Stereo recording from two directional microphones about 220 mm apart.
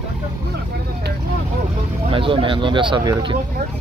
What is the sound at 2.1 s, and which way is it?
Speech, 25° right (ahead or behind).